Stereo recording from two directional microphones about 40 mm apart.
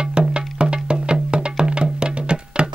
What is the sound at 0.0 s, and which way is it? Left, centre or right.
Music, right.